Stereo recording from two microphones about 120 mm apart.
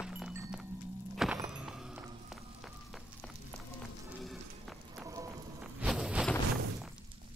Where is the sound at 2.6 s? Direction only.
Centre (ahead or behind).